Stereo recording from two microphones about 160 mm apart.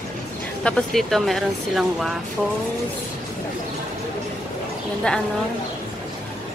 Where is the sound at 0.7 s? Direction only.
5° left (ahead or behind).